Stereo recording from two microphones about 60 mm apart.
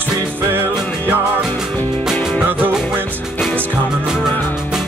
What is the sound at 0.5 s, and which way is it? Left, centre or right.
Music, right.